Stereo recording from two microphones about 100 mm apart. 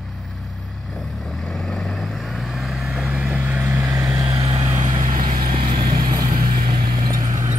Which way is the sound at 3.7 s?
35° right (ahead or behind).